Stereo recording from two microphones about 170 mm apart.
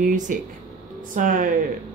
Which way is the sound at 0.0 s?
50° right (ahead or behind).